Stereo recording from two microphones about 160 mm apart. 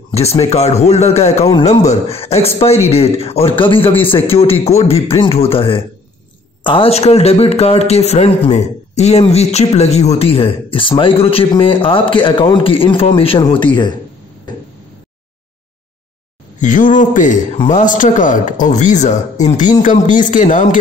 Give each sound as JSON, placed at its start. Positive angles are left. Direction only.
{"t": 0.1, "sound": "a man's voice", "side_deg": 40}
{"t": 16.5, "sound": "a man's voice", "side_deg": 50}